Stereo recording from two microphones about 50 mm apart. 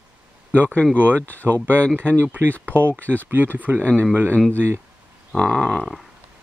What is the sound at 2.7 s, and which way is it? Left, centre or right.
Speech, right.